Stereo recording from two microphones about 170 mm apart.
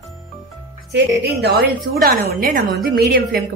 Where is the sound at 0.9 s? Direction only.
75° right (ahead or behind).